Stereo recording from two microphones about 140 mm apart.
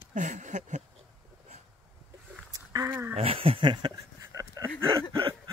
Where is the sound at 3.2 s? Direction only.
45° right (ahead or behind); by 5.0 s 25° right (ahead or behind).